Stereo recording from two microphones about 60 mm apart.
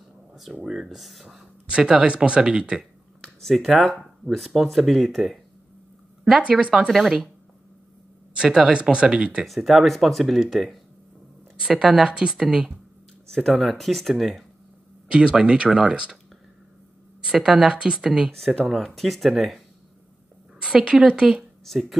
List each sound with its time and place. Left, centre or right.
0.3 s a sound: centre
0.8 s speech: centre
1.7 s speech: centre
3.2 s speech: centre
8.4 s speech: centre
9.5 s speech: centre
11.5 s speech: centre
13.3 s speech: centre
15.0 s speech: centre
17.2 s speech: centre
18.3 s speech: centre
20.6 s speech: centre